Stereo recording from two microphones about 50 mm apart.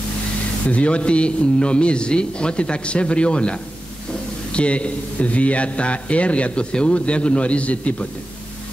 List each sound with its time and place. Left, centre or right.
0.7 s speech: left
4.6 s speech: left